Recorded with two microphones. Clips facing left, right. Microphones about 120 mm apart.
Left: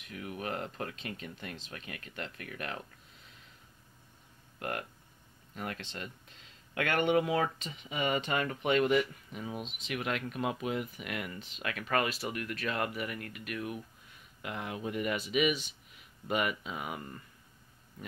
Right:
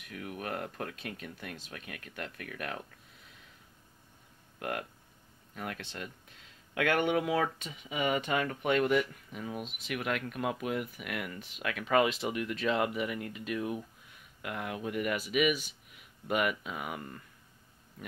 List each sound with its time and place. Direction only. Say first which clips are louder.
0.1 s speech: even; centre (ahead or behind)
4.6 s speech: right 1 dB; 5° right (ahead or behind)
9.6 s speech: right 1 dB; 10° right (ahead or behind)
11.3 s speech: right 2 dB; 10° right (ahead or behind)
14.4 s speech: right 1 dB; centre (ahead or behind)